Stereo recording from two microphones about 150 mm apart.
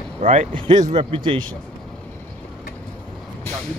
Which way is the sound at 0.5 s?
35° right (ahead or behind).